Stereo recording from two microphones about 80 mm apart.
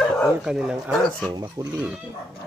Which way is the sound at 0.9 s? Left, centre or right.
Centre.